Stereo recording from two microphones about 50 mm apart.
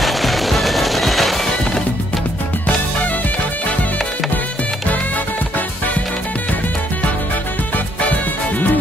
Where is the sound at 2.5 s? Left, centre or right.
Left.